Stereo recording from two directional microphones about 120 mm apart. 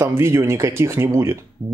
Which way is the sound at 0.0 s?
20° right (ahead or behind).